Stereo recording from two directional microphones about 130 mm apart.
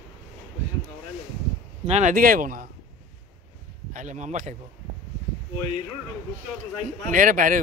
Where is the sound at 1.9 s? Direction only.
70° right (ahead or behind); by 2.7 s 90° right.